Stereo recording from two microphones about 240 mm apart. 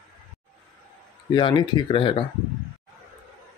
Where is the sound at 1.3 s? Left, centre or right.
Centre.